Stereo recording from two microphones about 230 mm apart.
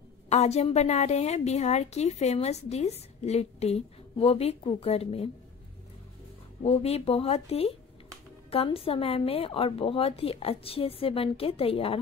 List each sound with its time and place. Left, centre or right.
0.3 s a woman's voice: left
6.6 s a woman's voice: left